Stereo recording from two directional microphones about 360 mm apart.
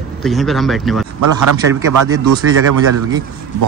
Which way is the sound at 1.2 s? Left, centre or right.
Right.